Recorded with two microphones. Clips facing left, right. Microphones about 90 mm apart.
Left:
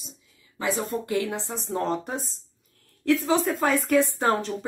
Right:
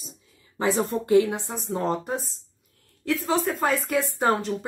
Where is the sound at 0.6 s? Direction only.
30° right (ahead or behind).